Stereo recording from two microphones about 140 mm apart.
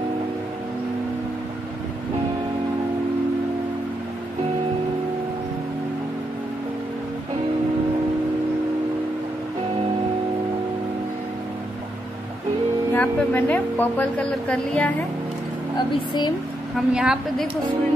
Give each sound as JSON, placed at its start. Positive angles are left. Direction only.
{"t": 12.9, "sound": "a woman's voice", "side_deg": 10}
{"t": 15.9, "sound": "a woman's voice", "side_deg": 30}
{"t": 16.7, "sound": "a woman's voice", "side_deg": -5}